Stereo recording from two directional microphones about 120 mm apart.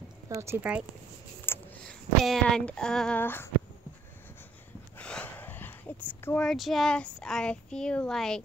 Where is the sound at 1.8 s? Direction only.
5° left (ahead or behind).